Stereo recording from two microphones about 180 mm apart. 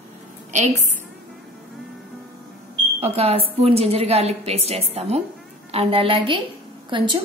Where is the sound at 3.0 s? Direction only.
35° right (ahead or behind).